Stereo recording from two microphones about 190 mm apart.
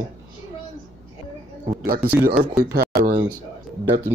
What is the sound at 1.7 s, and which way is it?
Speech, 50° right (ahead or behind).